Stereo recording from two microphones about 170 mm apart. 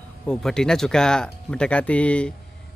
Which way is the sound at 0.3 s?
5° left (ahead or behind).